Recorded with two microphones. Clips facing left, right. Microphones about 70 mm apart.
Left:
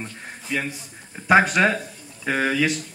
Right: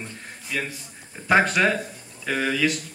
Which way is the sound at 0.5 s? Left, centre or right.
Left.